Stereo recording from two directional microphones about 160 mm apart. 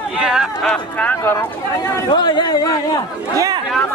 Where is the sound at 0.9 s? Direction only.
15° left (ahead or behind).